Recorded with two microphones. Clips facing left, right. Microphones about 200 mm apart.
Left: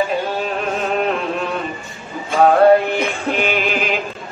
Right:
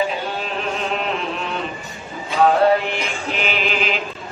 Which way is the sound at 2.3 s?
45° left (ahead or behind).